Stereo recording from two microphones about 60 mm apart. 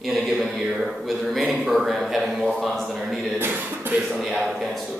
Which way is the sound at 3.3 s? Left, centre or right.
Right.